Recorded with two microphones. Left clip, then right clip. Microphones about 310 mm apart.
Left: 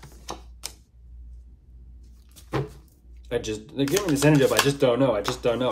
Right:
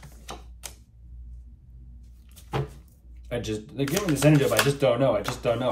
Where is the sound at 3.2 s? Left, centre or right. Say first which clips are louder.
Left 3 dB; centre.